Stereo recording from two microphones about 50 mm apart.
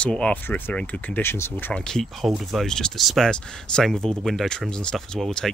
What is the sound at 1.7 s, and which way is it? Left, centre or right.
Speech, centre.